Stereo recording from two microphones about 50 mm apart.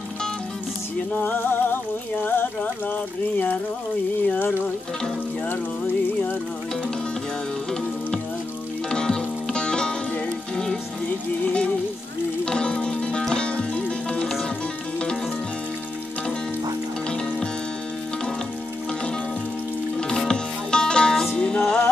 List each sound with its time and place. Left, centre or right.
1.1 s music: left
2.2 s a sound: left
8.9 s music: centre
12.4 s music: centre
13.7 s music: left
20.0 s music: centre